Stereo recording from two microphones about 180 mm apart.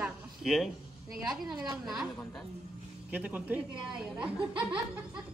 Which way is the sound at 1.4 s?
20° right (ahead or behind).